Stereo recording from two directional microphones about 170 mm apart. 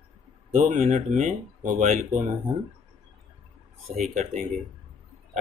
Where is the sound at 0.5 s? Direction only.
50° right (ahead or behind).